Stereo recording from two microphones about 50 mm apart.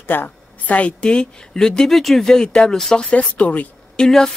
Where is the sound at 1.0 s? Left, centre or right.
Centre.